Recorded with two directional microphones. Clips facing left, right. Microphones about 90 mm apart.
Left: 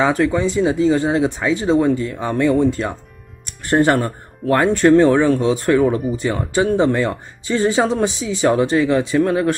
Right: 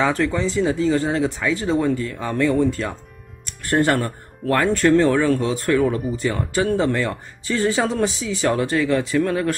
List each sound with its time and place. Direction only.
0.0 s speech: 20° left (ahead or behind)